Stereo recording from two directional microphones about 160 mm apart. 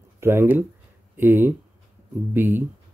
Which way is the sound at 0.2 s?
15° right (ahead or behind).